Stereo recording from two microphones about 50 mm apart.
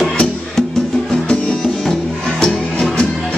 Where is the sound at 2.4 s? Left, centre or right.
Centre.